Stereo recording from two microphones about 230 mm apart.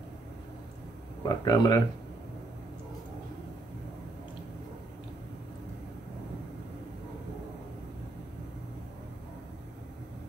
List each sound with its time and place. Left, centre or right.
1.2 s speech: centre